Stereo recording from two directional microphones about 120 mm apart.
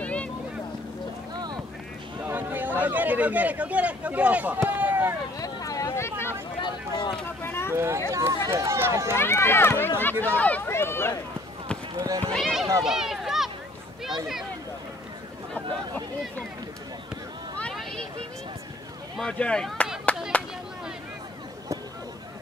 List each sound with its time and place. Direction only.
0.0 s boat: 10° left (ahead or behind)
1.3 s boat: 35° right (ahead or behind)
2.2 s speech: 15° right (ahead or behind)
5.4 s speech: 30° left (ahead or behind)
6.6 s speech: 40° left (ahead or behind)
7.4 s speech: 20° left (ahead or behind)
7.7 s speech: 20° right (ahead or behind)
9.1 s speech: 20° left (ahead or behind)
12.0 s speech: 30° right (ahead or behind)
12.3 s speech: centre (ahead or behind)
12.8 s run: 5° right (ahead or behind)
19.1 s speech: 10° left (ahead or behind)
20.3 s a sound: 10° left (ahead or behind)